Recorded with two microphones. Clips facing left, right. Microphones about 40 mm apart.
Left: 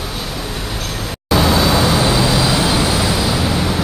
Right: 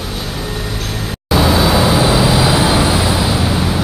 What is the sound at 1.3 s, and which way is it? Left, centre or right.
Vehicle, centre.